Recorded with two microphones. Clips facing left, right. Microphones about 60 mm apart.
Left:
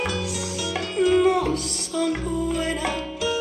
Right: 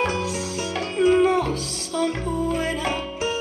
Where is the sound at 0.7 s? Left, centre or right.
Right.